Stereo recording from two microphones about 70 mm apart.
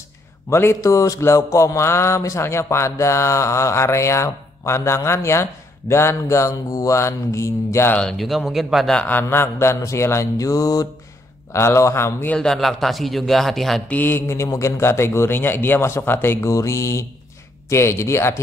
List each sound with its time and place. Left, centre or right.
0.5 s a man's voice: left
0.7 s speech: left
8.0 s speech: centre
9.1 s speech: left
11.5 s a man's voice: left
12.4 s speech: centre
13.8 s a man's voice: left